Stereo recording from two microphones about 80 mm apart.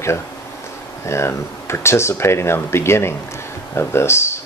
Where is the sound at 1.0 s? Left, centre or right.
Left.